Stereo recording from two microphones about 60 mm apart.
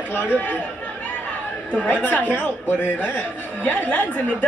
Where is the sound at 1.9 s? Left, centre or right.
Left.